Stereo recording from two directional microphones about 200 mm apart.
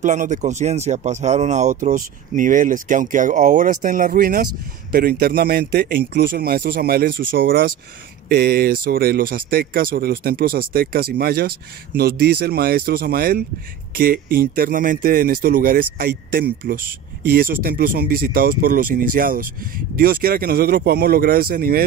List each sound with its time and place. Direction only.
0.0 s speech: 40° right (ahead or behind)